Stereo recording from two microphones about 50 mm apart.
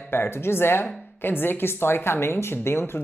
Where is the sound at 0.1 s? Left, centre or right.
Left.